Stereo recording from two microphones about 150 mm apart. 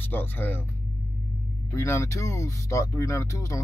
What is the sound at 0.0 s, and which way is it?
Speech, 15° left (ahead or behind).